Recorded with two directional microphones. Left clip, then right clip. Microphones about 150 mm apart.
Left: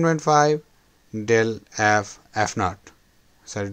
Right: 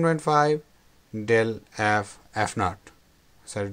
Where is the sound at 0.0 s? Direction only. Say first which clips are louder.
Left 3 dB; 25° left (ahead or behind).